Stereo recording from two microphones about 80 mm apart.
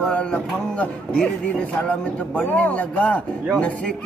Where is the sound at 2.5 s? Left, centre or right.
Centre.